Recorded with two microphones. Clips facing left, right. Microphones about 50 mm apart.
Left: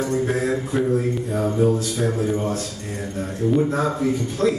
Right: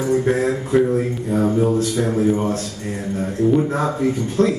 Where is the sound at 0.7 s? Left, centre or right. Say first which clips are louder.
Right 4 dB; right.